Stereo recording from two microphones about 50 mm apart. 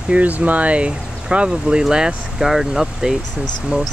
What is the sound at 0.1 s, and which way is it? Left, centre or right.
Speech, right.